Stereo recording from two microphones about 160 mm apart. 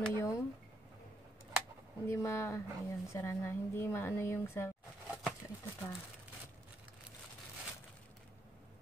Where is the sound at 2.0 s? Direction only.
15° left (ahead or behind).